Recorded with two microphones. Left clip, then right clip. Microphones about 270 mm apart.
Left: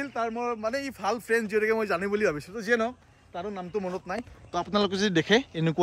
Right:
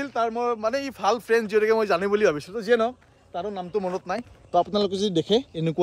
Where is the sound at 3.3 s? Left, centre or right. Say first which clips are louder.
Right 5 dB; right.